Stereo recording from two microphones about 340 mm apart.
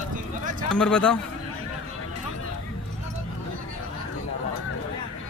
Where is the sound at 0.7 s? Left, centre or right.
Centre.